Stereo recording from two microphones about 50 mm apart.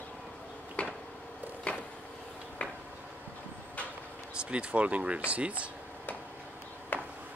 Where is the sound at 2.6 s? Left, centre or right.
Left.